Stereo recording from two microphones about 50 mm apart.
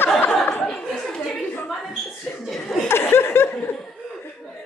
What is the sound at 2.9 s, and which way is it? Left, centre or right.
Laughter, left.